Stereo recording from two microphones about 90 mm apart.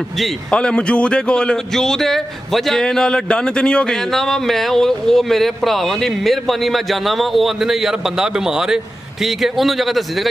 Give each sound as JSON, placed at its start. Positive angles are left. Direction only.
{"t": 0.5, "sound": "a man's voice", "side_deg": 10}